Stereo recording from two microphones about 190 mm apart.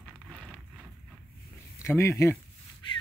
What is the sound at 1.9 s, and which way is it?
Speech, 15° left (ahead or behind).